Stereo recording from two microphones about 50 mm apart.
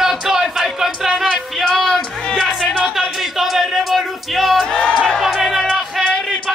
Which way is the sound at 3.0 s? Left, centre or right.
Centre.